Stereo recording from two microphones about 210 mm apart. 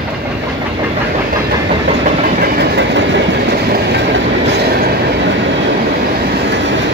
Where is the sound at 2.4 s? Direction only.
55° right (ahead or behind).